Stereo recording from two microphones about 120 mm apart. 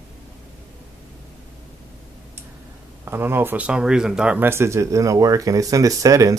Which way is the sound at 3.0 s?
20° right (ahead or behind).